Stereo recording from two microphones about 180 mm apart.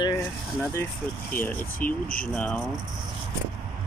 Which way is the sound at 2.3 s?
5° left (ahead or behind).